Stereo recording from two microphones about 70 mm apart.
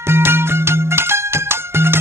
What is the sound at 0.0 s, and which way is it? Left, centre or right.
Music, right.